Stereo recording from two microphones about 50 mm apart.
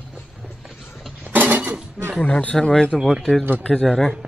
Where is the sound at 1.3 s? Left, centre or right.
Right.